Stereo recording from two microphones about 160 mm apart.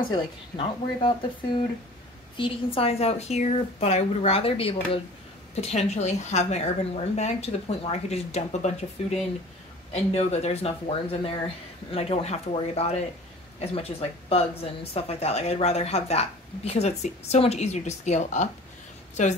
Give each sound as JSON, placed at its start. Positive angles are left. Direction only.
{"t": 0.1, "sound": "speech", "side_deg": 30}
{"t": 2.3, "sound": "a woman's voice", "side_deg": 30}